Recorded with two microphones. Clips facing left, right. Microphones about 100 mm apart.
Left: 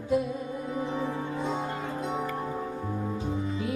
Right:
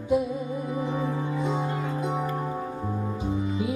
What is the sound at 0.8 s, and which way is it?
Music, 10° right (ahead or behind).